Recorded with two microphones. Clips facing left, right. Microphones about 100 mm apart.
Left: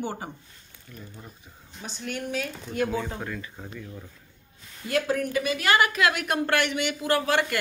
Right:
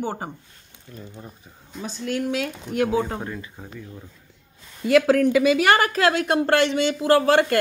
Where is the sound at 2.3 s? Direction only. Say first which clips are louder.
Right 5 dB; 85° right; by 3.2 s 70° right (ahead or behind).